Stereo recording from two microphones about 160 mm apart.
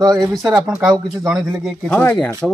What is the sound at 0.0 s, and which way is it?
Speech, 25° right (ahead or behind).